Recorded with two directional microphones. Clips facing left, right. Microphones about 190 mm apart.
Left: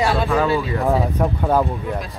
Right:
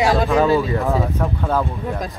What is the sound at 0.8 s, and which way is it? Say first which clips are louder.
Speech: left 2 dB; 15° left (ahead or behind).